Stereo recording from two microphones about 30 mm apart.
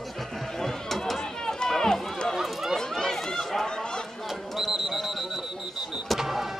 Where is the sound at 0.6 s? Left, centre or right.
Centre.